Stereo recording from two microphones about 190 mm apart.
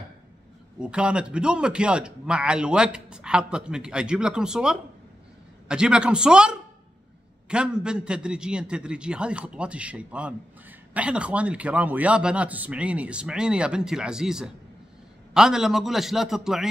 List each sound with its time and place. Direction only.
0.7 s a man's voice: 5° right (ahead or behind)